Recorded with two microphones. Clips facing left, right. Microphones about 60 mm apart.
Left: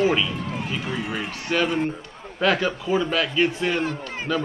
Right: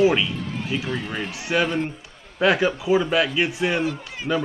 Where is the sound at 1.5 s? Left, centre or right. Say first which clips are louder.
Even; centre.